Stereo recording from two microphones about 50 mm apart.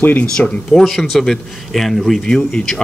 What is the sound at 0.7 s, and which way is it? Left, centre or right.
A man's voice, centre.